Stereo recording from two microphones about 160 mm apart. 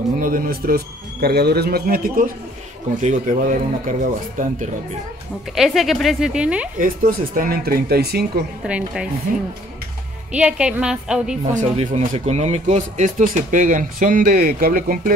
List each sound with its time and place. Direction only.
0.2 s speech: 60° right (ahead or behind)
3.0 s speech: 50° right (ahead or behind)
5.5 s speech: centre (ahead or behind)
6.8 s speech: 60° right (ahead or behind); by 8.3 s 80° right
8.6 s speech: 5° right (ahead or behind)
10.3 s speech: 5° right (ahead or behind)
11.5 s speech: 40° right (ahead or behind); by 15.1 s 65° right (ahead or behind)